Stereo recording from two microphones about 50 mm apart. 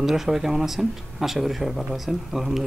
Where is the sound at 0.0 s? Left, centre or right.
Centre.